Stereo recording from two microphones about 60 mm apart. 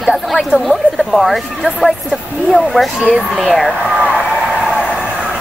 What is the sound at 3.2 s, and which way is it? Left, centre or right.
Speech, centre.